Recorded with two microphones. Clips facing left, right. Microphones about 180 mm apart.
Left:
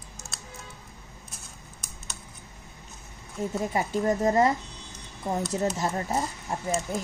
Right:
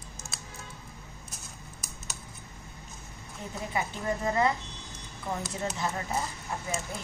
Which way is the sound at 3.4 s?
45° left (ahead or behind).